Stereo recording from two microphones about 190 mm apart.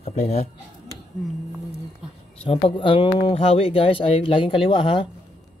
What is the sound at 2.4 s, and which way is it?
Speech, 30° left (ahead or behind).